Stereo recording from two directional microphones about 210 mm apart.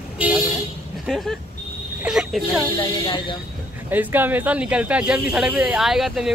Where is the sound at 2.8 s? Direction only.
25° left (ahead or behind).